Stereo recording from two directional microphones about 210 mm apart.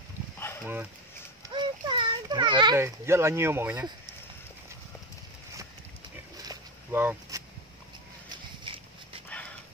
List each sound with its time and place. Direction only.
0.4 s dog: 10° left (ahead or behind)
1.5 s children playing: 25° right (ahead or behind)
6.3 s a sound: 15° right (ahead or behind)
8.7 s dog: 25° right (ahead or behind)